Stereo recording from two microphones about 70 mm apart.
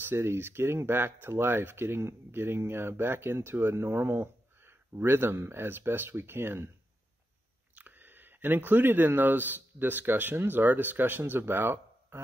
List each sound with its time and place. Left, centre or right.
0.0 s speech: right
7.7 s speech: right